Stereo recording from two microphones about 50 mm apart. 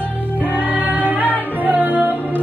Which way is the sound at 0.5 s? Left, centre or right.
Right.